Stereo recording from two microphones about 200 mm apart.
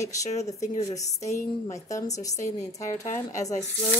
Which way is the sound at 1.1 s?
35° left (ahead or behind).